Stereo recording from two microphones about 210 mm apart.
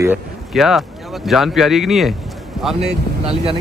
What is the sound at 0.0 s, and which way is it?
Speech, 5° right (ahead or behind).